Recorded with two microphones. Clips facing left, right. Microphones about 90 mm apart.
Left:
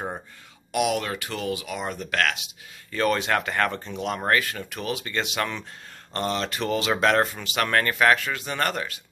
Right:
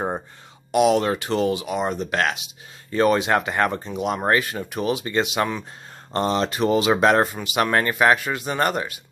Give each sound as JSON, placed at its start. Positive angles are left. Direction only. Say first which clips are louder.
{"t": 0.7, "sound": "speech", "louder": "right 7 dB", "side_deg": -30}